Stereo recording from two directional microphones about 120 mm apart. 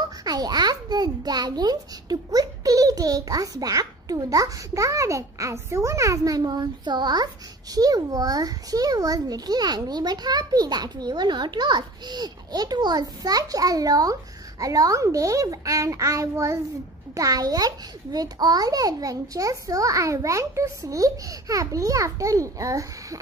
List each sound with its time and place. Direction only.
0.2 s a child's voice: 35° right (ahead or behind)